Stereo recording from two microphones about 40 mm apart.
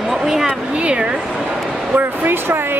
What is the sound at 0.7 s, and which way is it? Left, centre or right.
Speech, right.